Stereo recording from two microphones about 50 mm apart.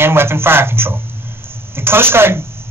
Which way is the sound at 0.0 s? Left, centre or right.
Right.